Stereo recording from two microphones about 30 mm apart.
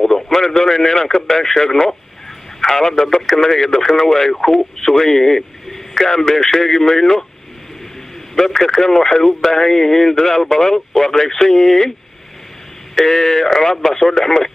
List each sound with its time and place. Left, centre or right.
0.0 s a man's voice: centre
3.7 s speech: left
4.0 s speech: centre
8.4 s speech: left
12.9 s speech: centre